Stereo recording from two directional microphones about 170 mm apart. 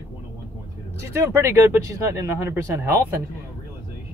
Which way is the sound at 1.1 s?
15° right (ahead or behind).